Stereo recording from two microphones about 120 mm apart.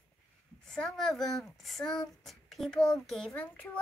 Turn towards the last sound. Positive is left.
turn(degrees=5)  # may be behind; listen again after turning